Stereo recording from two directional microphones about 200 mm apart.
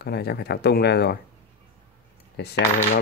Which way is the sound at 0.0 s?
55° left (ahead or behind).